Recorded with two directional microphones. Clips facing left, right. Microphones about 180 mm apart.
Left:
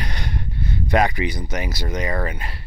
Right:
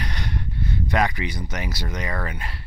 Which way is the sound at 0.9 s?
15° left (ahead or behind).